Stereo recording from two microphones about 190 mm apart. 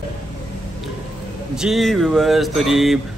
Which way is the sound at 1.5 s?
Centre (ahead or behind).